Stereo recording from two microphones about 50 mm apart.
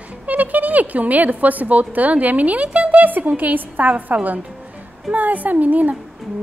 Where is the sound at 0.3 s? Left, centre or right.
Right.